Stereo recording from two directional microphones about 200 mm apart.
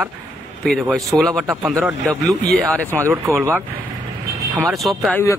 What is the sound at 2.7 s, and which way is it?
Speech, 5° left (ahead or behind).